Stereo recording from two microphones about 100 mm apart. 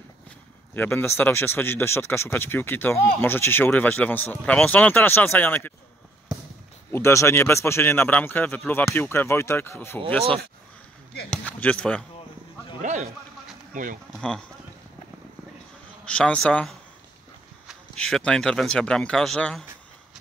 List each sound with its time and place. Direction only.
0.7 s speech: 20° left (ahead or behind)
6.9 s speech: 30° left (ahead or behind)
11.2 s speech: 10° left (ahead or behind)
16.1 s speech: 10° left (ahead or behind)
17.9 s speech: 10° left (ahead or behind)